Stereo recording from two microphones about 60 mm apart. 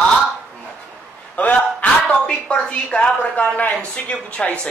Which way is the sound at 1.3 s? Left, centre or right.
Left.